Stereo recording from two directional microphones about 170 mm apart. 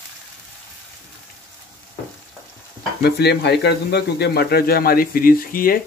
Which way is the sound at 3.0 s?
75° left (ahead or behind).